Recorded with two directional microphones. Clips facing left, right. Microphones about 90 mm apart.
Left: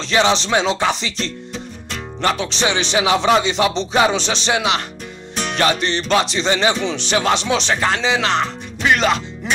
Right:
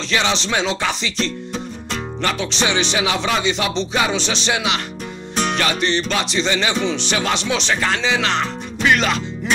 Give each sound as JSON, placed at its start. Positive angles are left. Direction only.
{"t": 0.0, "sound": "speech", "side_deg": 30}
{"t": 2.2, "sound": "music", "side_deg": 30}
{"t": 6.9, "sound": "speech", "side_deg": 35}